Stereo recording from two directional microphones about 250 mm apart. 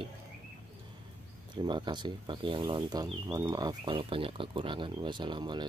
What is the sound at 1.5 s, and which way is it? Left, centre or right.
Speech, centre.